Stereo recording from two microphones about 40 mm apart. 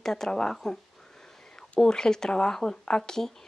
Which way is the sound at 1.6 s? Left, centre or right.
Centre.